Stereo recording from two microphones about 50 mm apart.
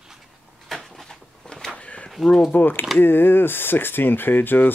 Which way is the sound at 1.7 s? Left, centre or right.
Left.